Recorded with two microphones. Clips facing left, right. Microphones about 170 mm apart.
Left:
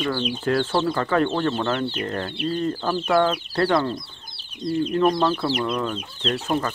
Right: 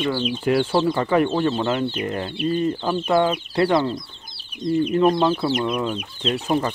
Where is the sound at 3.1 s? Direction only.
15° right (ahead or behind).